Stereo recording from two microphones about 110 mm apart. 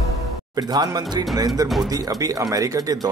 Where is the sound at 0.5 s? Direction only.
35° right (ahead or behind).